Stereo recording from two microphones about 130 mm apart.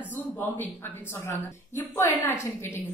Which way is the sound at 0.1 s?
15° left (ahead or behind).